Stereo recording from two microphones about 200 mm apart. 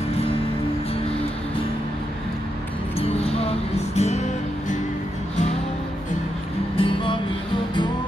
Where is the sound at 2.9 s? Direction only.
30° left (ahead or behind).